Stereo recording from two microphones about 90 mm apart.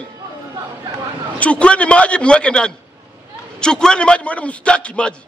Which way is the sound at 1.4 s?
15° left (ahead or behind).